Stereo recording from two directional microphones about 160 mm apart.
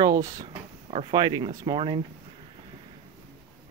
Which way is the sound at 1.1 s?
25° right (ahead or behind).